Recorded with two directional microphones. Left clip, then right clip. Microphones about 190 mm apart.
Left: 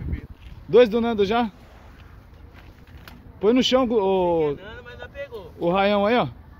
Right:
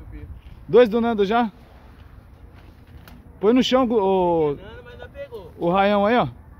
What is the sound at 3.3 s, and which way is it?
Speech, 15° right (ahead or behind).